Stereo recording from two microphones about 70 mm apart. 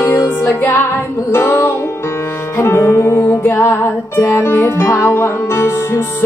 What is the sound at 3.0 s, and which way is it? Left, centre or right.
Music, left.